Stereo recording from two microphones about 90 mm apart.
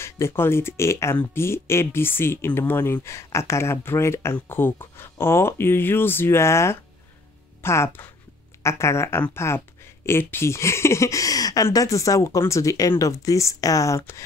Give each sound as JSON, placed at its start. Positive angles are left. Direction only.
{"t": 0.0, "sound": "speech", "side_deg": 30}